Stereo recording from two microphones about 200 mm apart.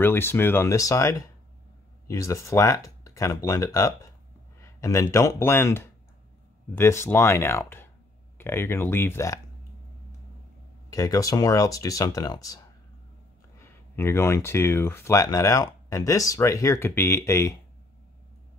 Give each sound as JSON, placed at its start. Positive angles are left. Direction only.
{"t": 0.0, "sound": "speech", "side_deg": 10}
{"t": 10.9, "sound": "speech", "side_deg": 15}
{"t": 13.6, "sound": "speech", "side_deg": 15}